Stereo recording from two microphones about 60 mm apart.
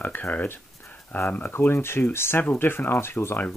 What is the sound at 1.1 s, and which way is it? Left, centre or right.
Speech, left.